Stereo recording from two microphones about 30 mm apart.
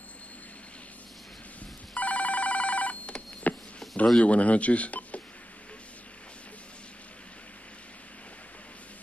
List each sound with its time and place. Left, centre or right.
2.0 s telephone bell ringing: left
3.8 s a sound: centre
4.2 s speech: left